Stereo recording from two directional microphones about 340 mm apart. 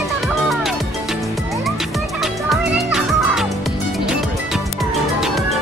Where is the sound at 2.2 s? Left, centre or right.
Centre.